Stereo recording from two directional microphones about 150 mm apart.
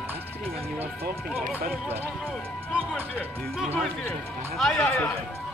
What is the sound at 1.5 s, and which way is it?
Speech, 15° right (ahead or behind).